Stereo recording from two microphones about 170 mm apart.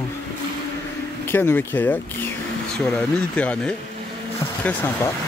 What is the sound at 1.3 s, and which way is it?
Speech, 10° left (ahead or behind).